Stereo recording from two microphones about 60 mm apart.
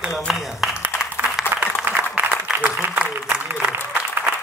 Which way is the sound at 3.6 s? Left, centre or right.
Right.